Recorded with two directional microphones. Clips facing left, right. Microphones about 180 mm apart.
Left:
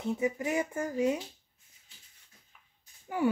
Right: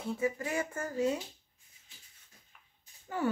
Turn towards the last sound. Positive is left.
turn(degrees=10)  # may be behind; listen again after turning